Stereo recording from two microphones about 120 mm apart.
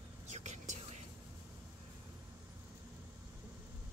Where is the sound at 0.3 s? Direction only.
75° right (ahead or behind).